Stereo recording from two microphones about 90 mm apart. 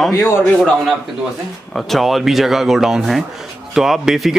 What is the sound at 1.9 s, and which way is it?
Speech, centre (ahead or behind).